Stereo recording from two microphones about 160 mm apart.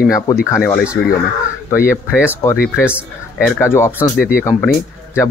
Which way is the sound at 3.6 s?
15° left (ahead or behind).